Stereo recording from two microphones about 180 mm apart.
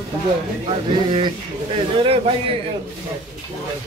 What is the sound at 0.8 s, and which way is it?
Speech, 25° right (ahead or behind).